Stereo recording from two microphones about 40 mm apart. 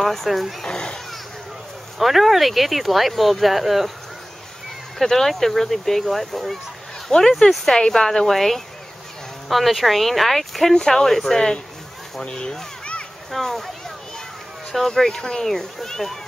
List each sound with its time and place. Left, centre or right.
0.0 s speech: centre
0.7 s a woman's voice: centre
2.0 s speech: centre
4.9 s speech: centre
7.1 s a woman's voice: centre
11.3 s speech: centre
13.3 s a woman's voice: centre
15.4 s speech: centre